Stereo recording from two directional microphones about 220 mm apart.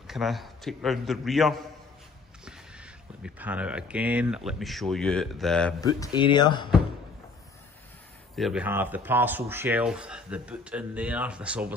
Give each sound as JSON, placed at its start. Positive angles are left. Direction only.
{"t": 0.0, "sound": "speech", "side_deg": 0}
{"t": 5.8, "sound": "speech", "side_deg": 15}
{"t": 8.4, "sound": "speech", "side_deg": -5}